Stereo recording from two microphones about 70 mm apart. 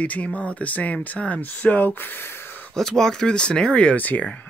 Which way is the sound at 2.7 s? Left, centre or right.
Centre.